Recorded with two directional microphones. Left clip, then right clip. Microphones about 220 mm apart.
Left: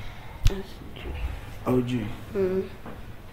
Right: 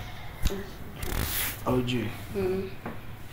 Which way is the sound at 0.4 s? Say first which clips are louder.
Left 2 dB; 50° left (ahead or behind).